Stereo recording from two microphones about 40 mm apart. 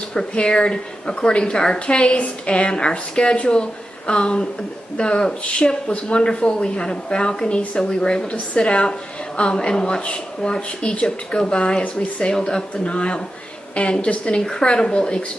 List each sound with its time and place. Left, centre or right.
0.5 s speech: left